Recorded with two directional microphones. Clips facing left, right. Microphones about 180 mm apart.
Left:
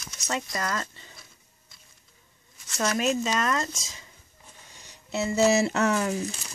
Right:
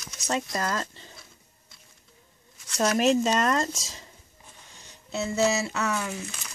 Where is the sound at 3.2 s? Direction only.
35° right (ahead or behind).